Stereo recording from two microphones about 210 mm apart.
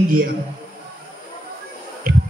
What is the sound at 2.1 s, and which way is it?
Music, 45° right (ahead or behind).